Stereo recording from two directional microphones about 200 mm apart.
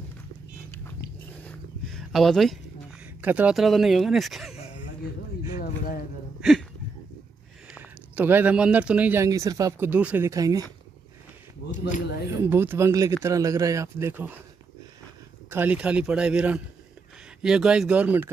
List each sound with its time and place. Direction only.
1.4 s a sound: centre (ahead or behind)
3.2 s speech: 10° right (ahead or behind)
7.7 s speech: 10° right (ahead or behind)
11.7 s speech: 40° left (ahead or behind)
12.3 s speech: 10° right (ahead or behind)
15.5 s speech: 10° right (ahead or behind)